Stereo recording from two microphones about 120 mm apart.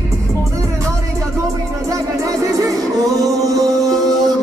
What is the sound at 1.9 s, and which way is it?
Music, 30° right (ahead or behind).